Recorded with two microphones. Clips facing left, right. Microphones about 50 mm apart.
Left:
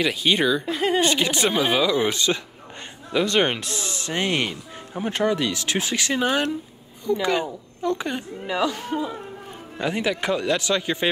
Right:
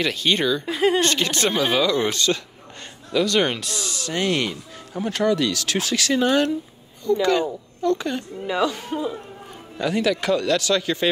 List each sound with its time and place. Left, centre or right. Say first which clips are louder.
0.0 s speech: left 1 dB; centre
0.7 s a woman's voice: right 2 dB; centre
1.0 s speech: even; centre
9.8 s speech: right 3 dB; left